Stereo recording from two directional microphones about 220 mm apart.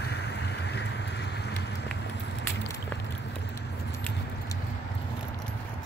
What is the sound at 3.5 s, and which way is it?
Keys jangling, 10° left (ahead or behind).